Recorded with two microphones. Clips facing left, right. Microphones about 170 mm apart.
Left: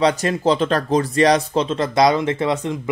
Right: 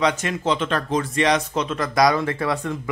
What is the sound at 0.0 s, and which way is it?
Speech, 35° left (ahead or behind).